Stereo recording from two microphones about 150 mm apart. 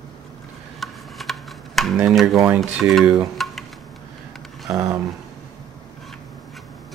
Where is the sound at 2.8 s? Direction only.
Centre (ahead or behind).